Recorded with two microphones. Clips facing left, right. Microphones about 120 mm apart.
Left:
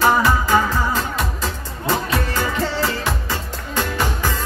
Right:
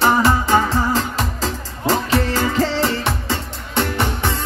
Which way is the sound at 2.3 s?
85° right.